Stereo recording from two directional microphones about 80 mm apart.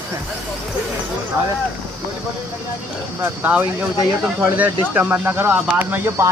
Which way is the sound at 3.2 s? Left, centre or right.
Centre.